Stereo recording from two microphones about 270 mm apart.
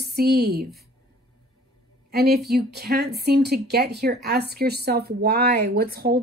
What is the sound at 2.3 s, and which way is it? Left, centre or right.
Speech, right.